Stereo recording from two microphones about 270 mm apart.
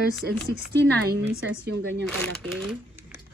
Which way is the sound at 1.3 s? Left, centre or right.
Right.